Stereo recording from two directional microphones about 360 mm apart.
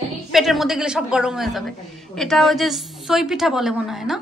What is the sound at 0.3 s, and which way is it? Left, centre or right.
A woman's voice, centre.